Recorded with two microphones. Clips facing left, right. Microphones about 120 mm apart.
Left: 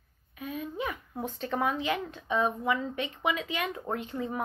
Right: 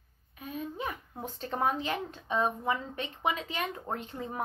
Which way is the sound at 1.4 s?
35° right (ahead or behind).